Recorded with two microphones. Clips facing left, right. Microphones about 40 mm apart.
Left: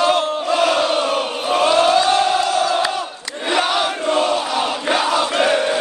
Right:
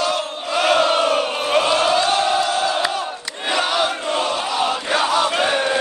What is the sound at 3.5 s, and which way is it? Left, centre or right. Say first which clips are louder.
Battle cry: left 1 dB; centre.